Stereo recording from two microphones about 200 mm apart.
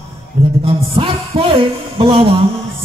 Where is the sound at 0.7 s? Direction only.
30° right (ahead or behind).